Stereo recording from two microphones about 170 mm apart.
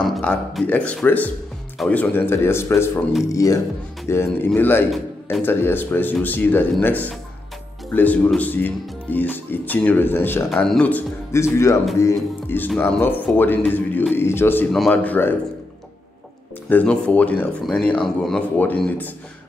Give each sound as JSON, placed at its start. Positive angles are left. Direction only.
{"t": 0.1, "sound": "speech", "side_deg": 5}
{"t": 16.6, "sound": "speech", "side_deg": 10}